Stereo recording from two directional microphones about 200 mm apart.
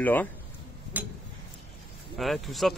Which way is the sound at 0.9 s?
10° right (ahead or behind).